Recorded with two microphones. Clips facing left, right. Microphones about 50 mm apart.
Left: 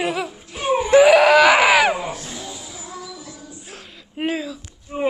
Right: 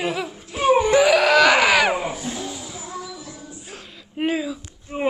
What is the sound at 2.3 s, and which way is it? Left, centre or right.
Music, centre.